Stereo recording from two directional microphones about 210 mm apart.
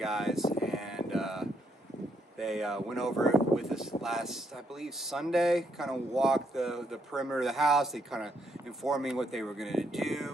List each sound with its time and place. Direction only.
0.0 s cattle: centre (ahead or behind)
0.7 s a sound: centre (ahead or behind)
4.0 s speech: centre (ahead or behind)